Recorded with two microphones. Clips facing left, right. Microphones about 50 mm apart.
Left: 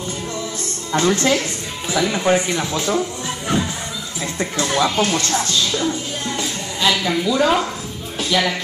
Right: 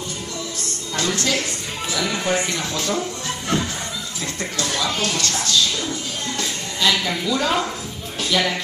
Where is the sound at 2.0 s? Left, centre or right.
Left.